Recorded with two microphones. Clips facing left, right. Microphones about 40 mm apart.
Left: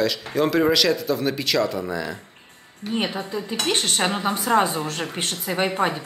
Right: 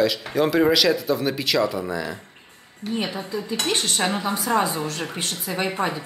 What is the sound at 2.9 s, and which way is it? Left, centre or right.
A woman's voice, left.